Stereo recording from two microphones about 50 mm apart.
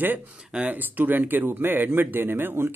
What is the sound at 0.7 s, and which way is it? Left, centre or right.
Speech, right.